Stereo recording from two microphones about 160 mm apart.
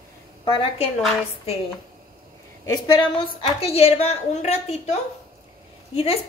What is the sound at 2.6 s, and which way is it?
A woman's voice, 25° left (ahead or behind).